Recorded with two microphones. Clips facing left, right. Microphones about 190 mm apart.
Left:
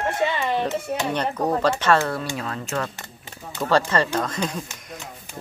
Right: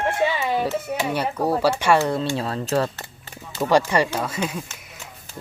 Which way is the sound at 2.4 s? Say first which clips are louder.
Right 5 dB; 30° right (ahead or behind).